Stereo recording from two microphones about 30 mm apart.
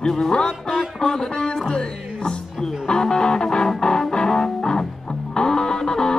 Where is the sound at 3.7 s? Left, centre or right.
Left.